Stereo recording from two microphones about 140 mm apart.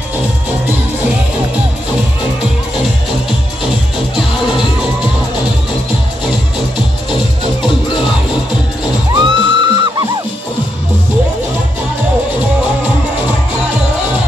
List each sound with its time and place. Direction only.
9.1 s music: 35° right (ahead or behind)